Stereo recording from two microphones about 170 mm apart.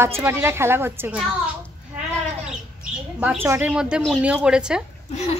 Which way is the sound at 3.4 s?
10° right (ahead or behind).